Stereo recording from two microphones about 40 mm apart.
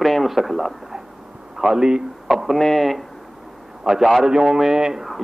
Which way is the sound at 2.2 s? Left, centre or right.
Centre.